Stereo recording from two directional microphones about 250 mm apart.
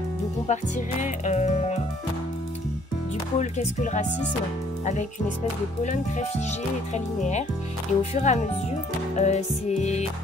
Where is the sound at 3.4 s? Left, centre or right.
Left.